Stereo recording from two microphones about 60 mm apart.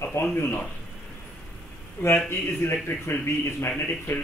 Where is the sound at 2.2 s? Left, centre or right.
Left.